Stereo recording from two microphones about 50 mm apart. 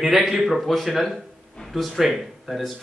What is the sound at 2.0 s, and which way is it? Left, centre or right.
Speech, centre.